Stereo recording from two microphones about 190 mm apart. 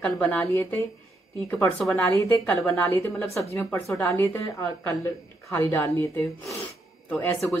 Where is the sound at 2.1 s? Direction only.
15° left (ahead or behind).